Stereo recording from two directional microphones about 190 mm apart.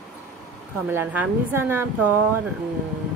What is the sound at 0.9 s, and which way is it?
Speech, 10° right (ahead or behind).